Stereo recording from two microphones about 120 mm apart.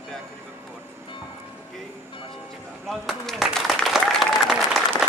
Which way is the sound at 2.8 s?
Centre (ahead or behind).